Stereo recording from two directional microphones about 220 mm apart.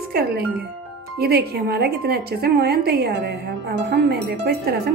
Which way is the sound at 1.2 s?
45° right (ahead or behind).